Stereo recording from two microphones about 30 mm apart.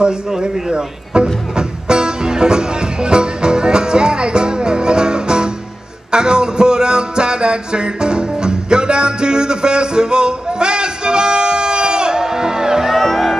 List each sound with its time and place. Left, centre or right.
0.3 s music: right